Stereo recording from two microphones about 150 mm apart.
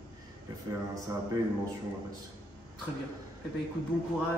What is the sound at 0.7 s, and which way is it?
Speech, 25° right (ahead or behind).